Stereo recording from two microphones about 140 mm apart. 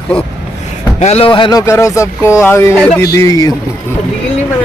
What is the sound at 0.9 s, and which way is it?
Speech, 50° left (ahead or behind).